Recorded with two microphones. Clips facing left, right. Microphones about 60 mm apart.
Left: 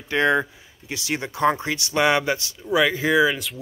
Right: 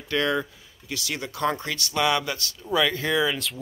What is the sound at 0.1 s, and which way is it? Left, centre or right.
Speech, left.